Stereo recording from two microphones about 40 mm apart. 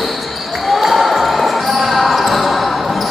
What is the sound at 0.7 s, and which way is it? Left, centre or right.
Basketball bounce, centre.